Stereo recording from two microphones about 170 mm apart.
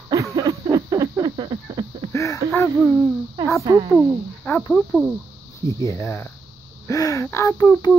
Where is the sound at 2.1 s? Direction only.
20° left (ahead or behind).